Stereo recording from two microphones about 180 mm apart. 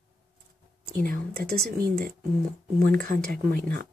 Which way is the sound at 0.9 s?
50° right (ahead or behind).